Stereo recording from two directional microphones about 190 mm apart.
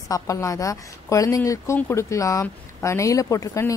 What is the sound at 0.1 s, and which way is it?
A woman's voice, 15° left (ahead or behind).